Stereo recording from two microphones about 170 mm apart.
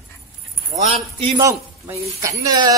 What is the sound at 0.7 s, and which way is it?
Speech, 40° right (ahead or behind).